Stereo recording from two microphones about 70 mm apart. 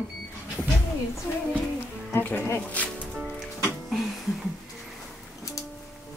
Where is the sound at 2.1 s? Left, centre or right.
Left.